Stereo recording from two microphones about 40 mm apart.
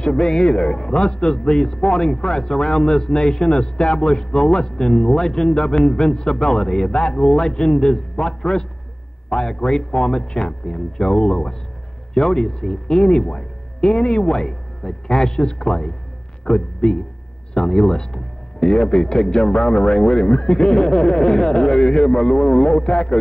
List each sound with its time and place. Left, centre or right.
0.0 s a man's voice: centre